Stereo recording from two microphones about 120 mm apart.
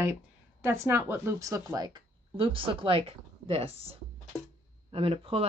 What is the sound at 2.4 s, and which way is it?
Speech, 45° right (ahead or behind).